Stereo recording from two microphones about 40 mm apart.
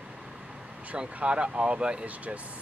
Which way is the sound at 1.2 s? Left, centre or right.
Right.